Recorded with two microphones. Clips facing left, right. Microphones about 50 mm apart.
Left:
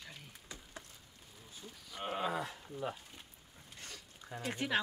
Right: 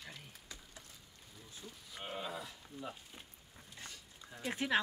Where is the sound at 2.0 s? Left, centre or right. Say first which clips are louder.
Left 6 dB; left.